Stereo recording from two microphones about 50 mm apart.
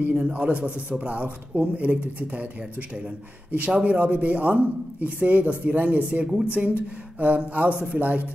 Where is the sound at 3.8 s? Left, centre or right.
Right.